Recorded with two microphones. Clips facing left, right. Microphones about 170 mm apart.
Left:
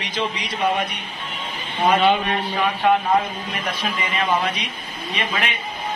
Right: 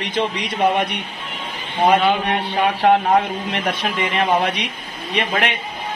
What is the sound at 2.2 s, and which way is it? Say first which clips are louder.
Speech: right 2 dB; 65° right (ahead or behind).